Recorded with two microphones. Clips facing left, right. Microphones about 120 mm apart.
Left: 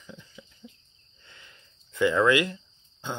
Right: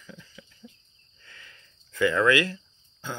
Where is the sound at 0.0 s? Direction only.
20° left (ahead or behind).